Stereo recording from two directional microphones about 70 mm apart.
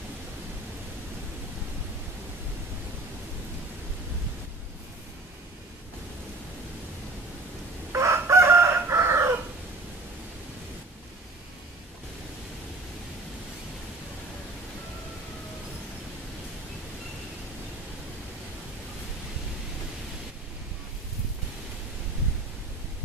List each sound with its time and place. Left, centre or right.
7.9 s chicken: right